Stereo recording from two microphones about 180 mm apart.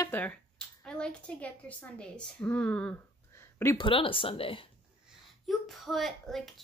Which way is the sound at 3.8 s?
30° left (ahead or behind).